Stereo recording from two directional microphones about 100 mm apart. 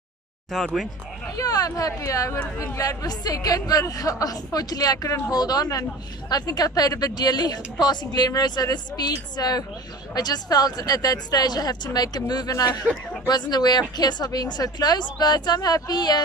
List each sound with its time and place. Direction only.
1.3 s speech: 40° left (ahead or behind)
2.3 s speech: 15° left (ahead or behind)
2.6 s a woman's voice: 35° left (ahead or behind)